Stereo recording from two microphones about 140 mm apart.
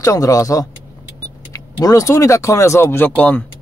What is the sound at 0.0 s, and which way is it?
Speech, 25° left (ahead or behind).